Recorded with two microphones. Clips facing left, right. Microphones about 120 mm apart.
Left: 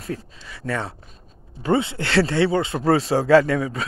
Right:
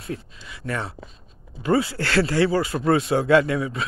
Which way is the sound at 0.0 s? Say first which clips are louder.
Left 2 dB; 35° left (ahead or behind).